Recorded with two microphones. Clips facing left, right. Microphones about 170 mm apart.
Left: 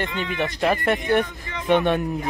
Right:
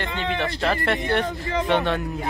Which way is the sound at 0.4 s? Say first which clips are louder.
Left 4 dB; 15° left (ahead or behind).